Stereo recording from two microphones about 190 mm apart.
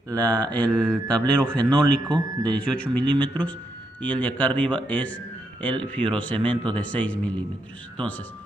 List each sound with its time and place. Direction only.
0.1 s speech: 10° left (ahead or behind)
1.7 s speech: 25° right (ahead or behind)
2.4 s a man's voice: 5° left (ahead or behind)